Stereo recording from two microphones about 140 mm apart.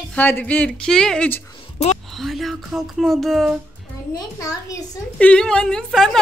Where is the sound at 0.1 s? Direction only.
10° left (ahead or behind).